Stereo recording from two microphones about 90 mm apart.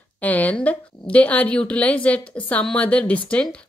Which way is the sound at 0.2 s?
15° left (ahead or behind).